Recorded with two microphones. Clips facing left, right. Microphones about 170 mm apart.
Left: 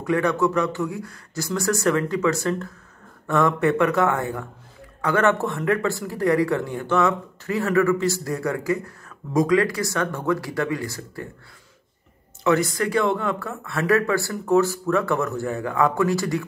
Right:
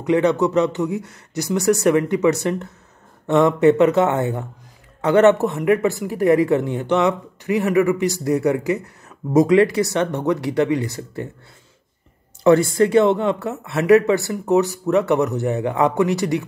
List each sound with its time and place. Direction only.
0.0 s speech: 20° right (ahead or behind)
12.4 s speech: 30° right (ahead or behind)